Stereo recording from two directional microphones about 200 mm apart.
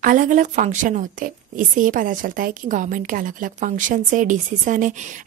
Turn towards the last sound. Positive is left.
turn(degrees=-40)  # may be behind; listen again after turning